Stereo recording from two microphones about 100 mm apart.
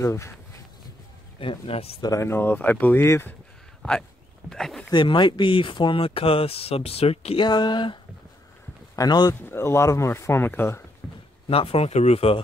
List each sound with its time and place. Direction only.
0.0 s speech: 30° left (ahead or behind)
1.4 s speech: 70° left (ahead or behind)
2.0 s speech: 40° left (ahead or behind)
2.2 s speech: 20° left (ahead or behind)
4.5 s speech: 5° left (ahead or behind)
4.9 s speech: 55° left (ahead or behind); by 7.3 s 85° left
7.3 s speech: 45° left (ahead or behind)
9.3 s speech: 25° left (ahead or behind)
11.0 s a sound: 5° right (ahead or behind)
11.4 s speech: 75° left (ahead or behind); by 12.4 s 90° left